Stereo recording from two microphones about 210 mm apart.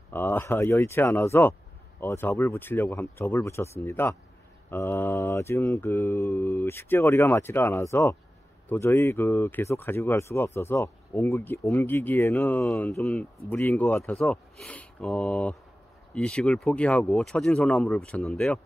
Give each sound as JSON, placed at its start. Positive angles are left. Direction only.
{"t": 0.1, "sound": "speech", "side_deg": 10}